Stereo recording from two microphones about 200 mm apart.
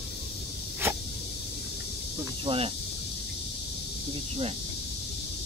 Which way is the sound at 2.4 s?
25° right (ahead or behind).